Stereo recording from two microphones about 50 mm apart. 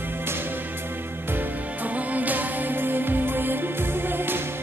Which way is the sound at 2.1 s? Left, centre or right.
Right.